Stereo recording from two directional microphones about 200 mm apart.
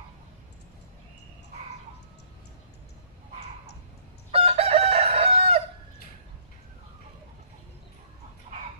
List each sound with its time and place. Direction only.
4.3 s chicken: 30° right (ahead or behind)